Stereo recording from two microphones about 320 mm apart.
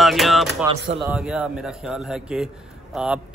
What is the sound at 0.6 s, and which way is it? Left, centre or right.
Speech, centre.